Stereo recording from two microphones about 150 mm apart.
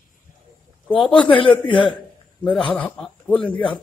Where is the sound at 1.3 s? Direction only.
35° left (ahead or behind).